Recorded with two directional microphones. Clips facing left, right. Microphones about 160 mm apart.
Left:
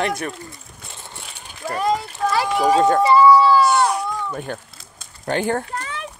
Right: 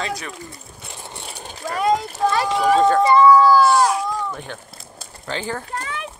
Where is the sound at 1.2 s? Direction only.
40° right (ahead or behind).